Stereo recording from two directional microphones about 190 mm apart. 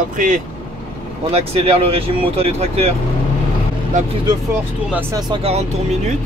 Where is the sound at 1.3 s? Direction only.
30° right (ahead or behind).